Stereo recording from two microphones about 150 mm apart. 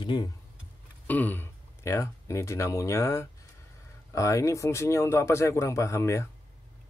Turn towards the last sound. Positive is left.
turn(degrees=20)  # may be behind; listen again after turning